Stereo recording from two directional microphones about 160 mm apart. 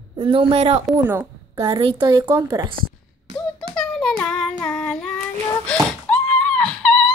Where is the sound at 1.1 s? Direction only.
20° right (ahead or behind).